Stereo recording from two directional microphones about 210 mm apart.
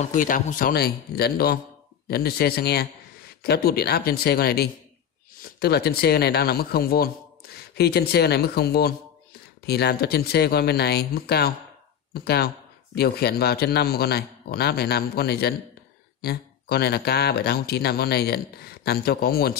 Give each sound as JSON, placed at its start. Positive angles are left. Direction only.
{"t": 0.0, "sound": "speech", "side_deg": 40}